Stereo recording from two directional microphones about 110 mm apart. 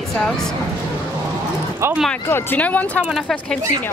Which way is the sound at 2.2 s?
15° left (ahead or behind).